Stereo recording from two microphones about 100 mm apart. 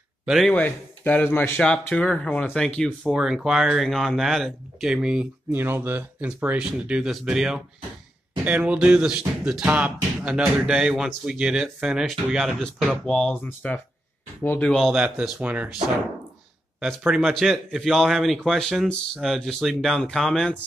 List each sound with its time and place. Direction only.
0.2 s speech: 5° right (ahead or behind)
0.5 s speech: 15° left (ahead or behind); by 5.3 s 10° right (ahead or behind)
5.5 s speech: 20° right (ahead or behind); by 13.7 s 15° left (ahead or behind)
15.0 s speech: 10° right (ahead or behind)
17.2 s speech: centre (ahead or behind)